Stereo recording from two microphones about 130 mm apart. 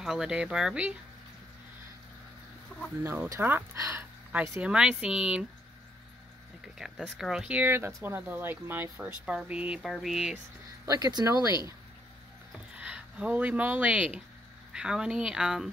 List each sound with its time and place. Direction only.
0.0 s speech: 5° right (ahead or behind)
3.0 s speech: 15° right (ahead or behind)
4.3 s speech: 10° right (ahead or behind)
6.8 s speech: centre (ahead or behind)
10.9 s speech: 30° right (ahead or behind)
12.7 s speech: 10° right (ahead or behind)